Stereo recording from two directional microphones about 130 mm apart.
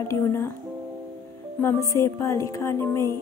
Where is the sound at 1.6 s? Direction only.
20° left (ahead or behind).